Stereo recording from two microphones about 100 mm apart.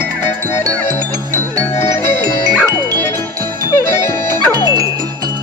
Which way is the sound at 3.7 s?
25° left (ahead or behind).